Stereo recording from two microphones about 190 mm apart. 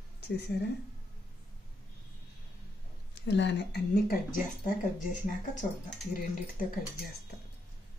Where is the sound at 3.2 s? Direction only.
70° left (ahead or behind).